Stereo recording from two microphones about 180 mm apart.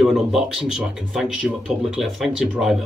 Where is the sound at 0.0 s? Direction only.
Centre (ahead or behind).